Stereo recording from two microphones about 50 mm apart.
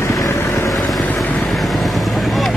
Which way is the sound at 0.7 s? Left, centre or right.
Centre.